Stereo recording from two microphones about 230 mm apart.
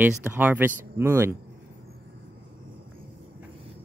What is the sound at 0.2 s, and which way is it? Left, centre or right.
Speech, centre.